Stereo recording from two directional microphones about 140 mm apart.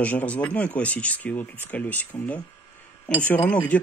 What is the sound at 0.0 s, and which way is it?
Speech, 10° left (ahead or behind).